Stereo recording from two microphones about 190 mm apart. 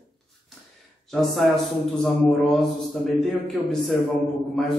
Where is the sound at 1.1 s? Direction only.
Centre (ahead or behind).